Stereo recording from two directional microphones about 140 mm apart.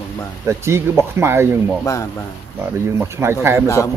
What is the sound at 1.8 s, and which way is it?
Speech, 20° left (ahead or behind).